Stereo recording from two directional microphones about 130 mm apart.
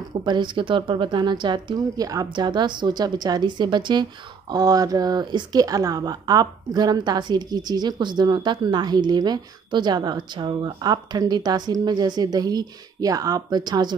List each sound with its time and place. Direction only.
0.2 s a woman's voice: 35° right (ahead or behind)